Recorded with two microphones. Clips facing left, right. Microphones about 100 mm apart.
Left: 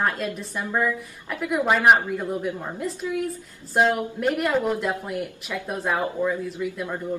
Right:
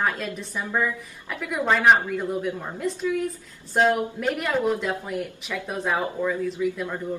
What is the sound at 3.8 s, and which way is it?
A woman's voice, centre (ahead or behind).